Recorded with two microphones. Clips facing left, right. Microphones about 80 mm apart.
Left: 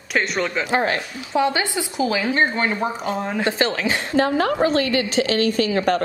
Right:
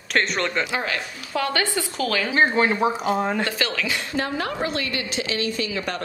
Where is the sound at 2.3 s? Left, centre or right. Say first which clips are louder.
Right 1 dB; centre.